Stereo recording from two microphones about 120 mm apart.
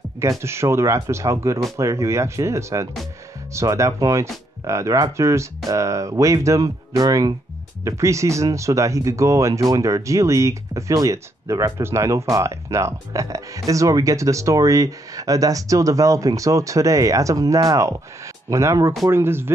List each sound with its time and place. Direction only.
0.2 s speech: 25° right (ahead or behind)